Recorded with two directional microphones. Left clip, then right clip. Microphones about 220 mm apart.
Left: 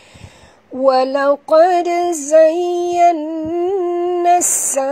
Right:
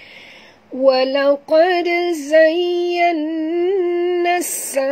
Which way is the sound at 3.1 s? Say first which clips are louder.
Even; 15° left (ahead or behind).